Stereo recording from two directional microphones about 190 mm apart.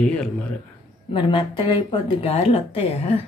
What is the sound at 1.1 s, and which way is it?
Speech, 25° left (ahead or behind).